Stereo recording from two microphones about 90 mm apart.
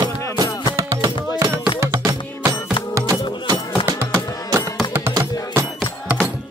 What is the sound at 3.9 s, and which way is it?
Music, 40° right (ahead or behind).